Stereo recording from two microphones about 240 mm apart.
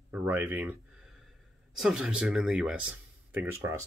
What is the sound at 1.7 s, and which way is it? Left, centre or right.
Speech, centre.